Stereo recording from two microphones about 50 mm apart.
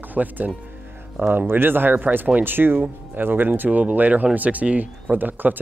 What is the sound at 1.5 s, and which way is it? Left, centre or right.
Speech, right.